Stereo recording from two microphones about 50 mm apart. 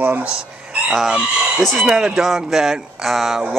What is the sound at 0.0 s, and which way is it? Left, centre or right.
Speech, right.